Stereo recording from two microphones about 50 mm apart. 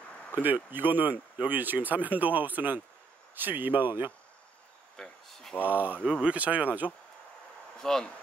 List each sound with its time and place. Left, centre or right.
0.3 s speech: right
4.9 s a sound: centre
5.7 s speech: right
7.8 s speech: centre